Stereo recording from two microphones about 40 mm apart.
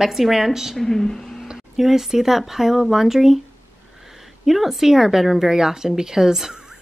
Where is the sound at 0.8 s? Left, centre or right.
Centre.